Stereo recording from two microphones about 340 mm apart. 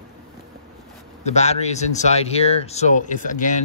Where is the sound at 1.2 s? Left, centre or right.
Centre.